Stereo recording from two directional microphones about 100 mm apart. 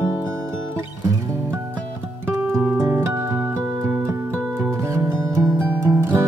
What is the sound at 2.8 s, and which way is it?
Music, 25° right (ahead or behind).